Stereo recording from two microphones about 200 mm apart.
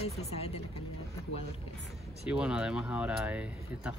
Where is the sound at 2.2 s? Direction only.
5° right (ahead or behind).